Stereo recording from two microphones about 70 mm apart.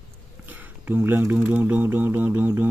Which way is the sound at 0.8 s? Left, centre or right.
Right.